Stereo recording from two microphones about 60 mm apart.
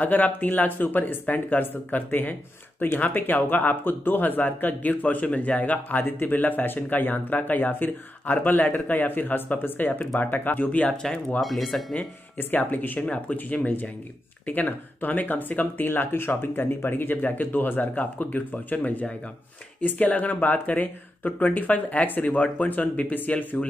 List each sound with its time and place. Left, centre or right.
0.0 s speech: left
11.0 s speech: centre
11.4 s speech: centre
12.4 s speech: left